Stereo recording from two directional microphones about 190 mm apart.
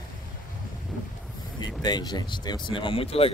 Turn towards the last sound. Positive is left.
turn(degrees=30)  # may be behind; listen again after turning